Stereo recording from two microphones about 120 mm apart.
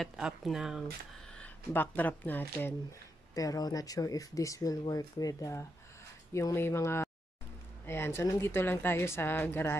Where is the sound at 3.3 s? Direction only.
30° left (ahead or behind).